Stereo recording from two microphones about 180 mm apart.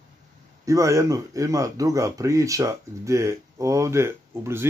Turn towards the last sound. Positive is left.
turn(degrees=-15)  # may be behind; listen again after turning